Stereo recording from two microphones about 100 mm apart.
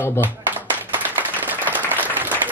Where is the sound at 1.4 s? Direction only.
20° right (ahead or behind).